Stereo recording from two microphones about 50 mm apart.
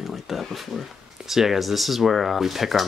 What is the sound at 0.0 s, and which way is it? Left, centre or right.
Speech, centre.